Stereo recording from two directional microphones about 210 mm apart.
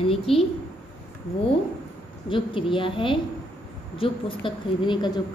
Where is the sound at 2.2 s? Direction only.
25° left (ahead or behind).